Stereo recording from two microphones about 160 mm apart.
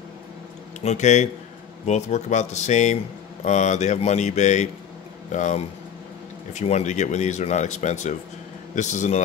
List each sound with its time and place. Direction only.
0.7 s a man's voice: 45° left (ahead or behind)